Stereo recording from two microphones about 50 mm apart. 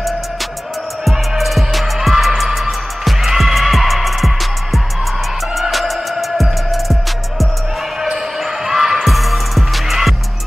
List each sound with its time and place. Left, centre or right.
1.0 s music: centre
5.6 s music: centre
8.6 s music: centre